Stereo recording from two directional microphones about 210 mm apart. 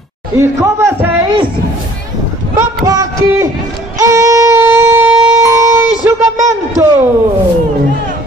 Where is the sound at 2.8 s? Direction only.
15° right (ahead or behind).